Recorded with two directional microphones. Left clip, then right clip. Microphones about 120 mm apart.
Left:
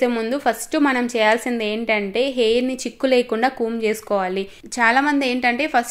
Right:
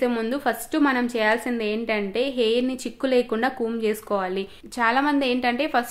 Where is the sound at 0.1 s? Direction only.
20° left (ahead or behind).